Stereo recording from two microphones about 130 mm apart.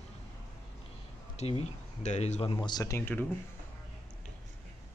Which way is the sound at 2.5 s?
35° left (ahead or behind).